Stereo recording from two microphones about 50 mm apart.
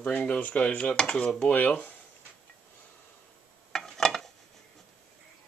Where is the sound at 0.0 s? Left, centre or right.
Left.